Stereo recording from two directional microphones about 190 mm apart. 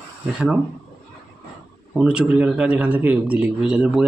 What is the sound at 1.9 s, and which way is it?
A man's voice, 5° right (ahead or behind).